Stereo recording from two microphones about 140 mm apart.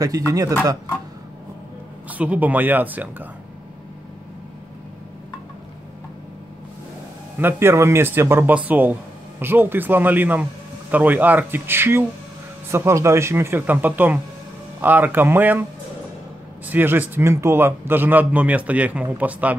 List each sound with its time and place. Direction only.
0.0 s speech: 25° right (ahead or behind)
2.0 s a man's voice: 10° right (ahead or behind)
7.3 s a man's voice: 15° right (ahead or behind)
16.6 s a man's voice: 15° right (ahead or behind)